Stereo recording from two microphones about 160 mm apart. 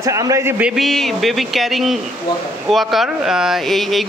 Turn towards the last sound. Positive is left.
turn(degrees=0)  # may be behind; listen again after turning